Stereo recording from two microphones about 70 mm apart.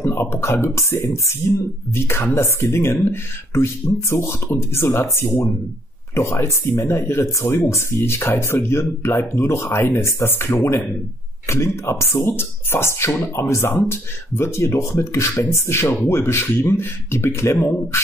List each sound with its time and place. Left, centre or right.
0.0 s speech: left